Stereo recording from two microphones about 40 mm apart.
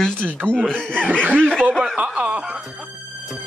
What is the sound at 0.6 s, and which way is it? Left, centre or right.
Speech, left.